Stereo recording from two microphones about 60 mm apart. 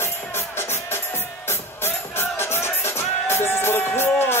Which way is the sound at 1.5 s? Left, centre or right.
Left.